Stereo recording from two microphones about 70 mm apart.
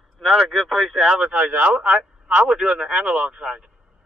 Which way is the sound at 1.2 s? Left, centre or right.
Centre.